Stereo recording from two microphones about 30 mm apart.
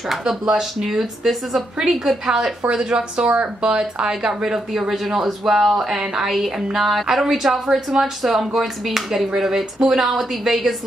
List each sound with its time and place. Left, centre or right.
0.5 s speech: centre
2.7 s speech: right; by 10.7 s centre